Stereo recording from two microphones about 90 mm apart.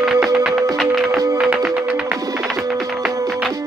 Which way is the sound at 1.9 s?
15° right (ahead or behind).